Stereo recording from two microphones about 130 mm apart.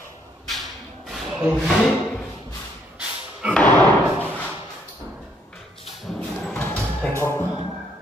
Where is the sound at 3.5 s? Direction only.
10° left (ahead or behind).